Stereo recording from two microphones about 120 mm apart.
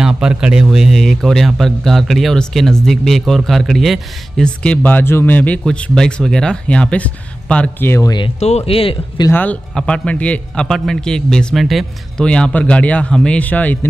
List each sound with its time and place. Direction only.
0.0 s a man's voice: 5° right (ahead or behind); by 7.9 s 10° left (ahead or behind)
8.4 s speech: 65° left (ahead or behind)
9.3 s a man's voice: 15° left (ahead or behind)